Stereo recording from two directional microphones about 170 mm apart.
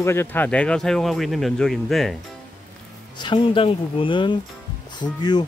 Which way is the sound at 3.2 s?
30° left (ahead or behind).